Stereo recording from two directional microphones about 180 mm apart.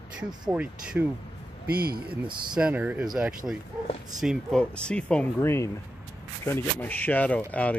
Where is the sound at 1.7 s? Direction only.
60° right (ahead or behind).